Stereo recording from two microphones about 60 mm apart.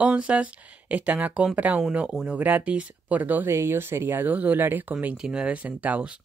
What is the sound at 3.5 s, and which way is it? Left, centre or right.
Speech, right.